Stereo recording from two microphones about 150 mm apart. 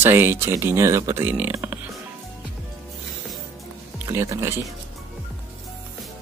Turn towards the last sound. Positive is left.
turn(degrees=-15)  # may be behind; listen again after turning